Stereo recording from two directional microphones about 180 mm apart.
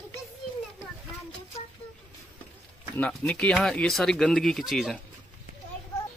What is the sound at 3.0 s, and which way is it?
Speech, 5° left (ahead or behind).